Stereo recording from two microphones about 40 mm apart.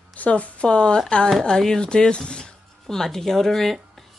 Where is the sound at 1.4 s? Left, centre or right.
Centre.